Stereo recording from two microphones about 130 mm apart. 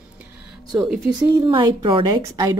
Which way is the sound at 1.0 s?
25° right (ahead or behind).